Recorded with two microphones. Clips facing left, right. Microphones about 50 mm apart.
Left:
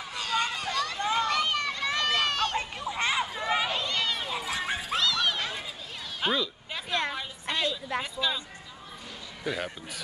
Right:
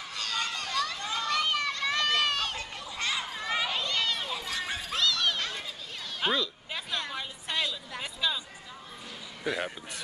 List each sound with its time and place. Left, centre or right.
0.1 s children playing: centre
0.9 s children playing: centre
1.2 s run: centre
2.5 s children playing: left
3.3 s a sound: centre
4.9 s a sound: centre
9.4 s a man's voice: centre